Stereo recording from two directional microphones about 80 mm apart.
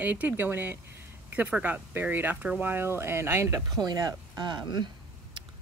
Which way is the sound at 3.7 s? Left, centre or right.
Right.